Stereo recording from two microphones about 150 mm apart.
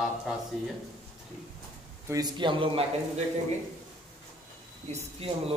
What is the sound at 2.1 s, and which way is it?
Speech, 30° right (ahead or behind).